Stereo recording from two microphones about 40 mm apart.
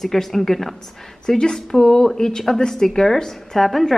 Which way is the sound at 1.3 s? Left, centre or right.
Centre.